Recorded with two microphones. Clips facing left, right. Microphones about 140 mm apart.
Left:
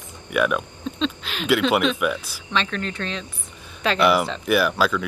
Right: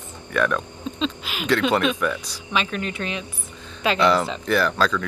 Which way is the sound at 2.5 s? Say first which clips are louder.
Even; 10° right (ahead or behind).